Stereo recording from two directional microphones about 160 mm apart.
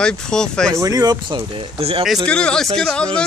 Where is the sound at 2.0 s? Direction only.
Centre (ahead or behind).